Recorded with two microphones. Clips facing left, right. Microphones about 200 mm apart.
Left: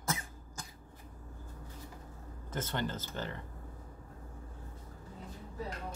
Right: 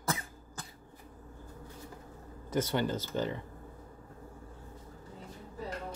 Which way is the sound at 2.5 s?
10° right (ahead or behind).